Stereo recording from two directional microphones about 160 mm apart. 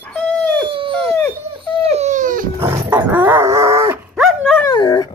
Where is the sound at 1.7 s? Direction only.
40° right (ahead or behind); by 2.5 s 55° right (ahead or behind).